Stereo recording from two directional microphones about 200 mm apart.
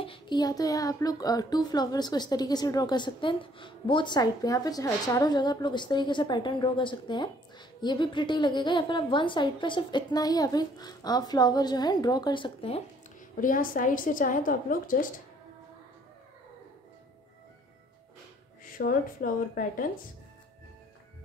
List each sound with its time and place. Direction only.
0.0 s a child's voice: 25° left (ahead or behind)
13.4 s a woman's voice: 40° left (ahead or behind)
18.6 s a woman's voice: 45° left (ahead or behind)